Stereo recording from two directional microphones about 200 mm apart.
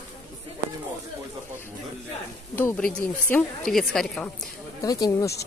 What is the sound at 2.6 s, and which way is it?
A woman's voice, 10° left (ahead or behind).